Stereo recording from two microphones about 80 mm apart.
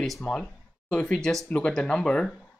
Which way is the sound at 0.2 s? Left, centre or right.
Centre.